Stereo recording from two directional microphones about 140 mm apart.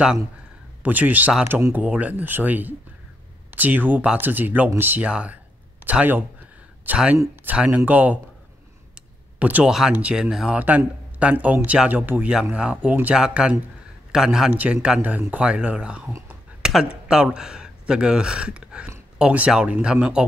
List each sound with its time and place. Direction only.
0.8 s speech: 10° right (ahead or behind)
9.4 s speech: 10° right (ahead or behind)
16.1 s speech: 20° right (ahead or behind)
16.6 s a sound: 5° right (ahead or behind)
17.1 s speech: 5° right (ahead or behind)